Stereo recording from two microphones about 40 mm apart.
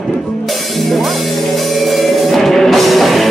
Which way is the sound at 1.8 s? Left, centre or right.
Centre.